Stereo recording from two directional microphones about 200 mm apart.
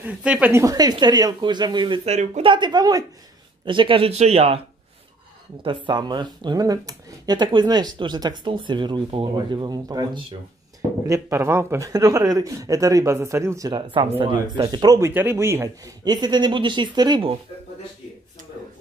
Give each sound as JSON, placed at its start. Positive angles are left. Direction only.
{"t": 0.0, "sound": "speech", "side_deg": -5}
{"t": 5.6, "sound": "speech", "side_deg": -25}